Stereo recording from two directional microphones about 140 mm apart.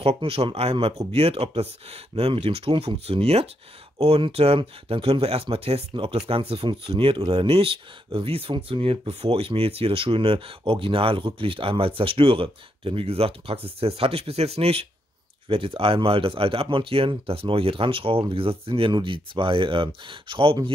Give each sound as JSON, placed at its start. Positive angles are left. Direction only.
{"t": 0.0, "sound": "speech", "side_deg": -45}